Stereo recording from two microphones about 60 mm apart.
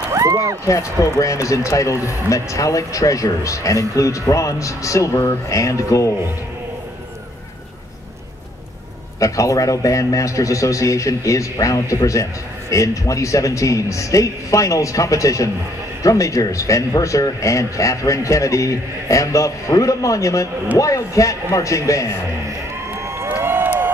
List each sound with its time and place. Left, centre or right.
0.1 s run: right
0.7 s a man's voice: left
9.2 s a man's voice: left
23.3 s crowd: right